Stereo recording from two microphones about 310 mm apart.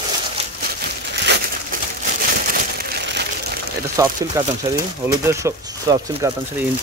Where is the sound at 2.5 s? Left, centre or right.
Right.